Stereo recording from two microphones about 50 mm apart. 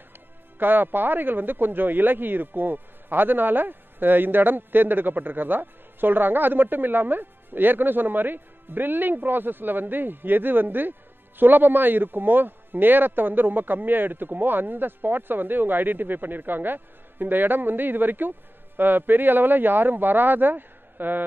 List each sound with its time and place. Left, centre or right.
0.6 s speech: right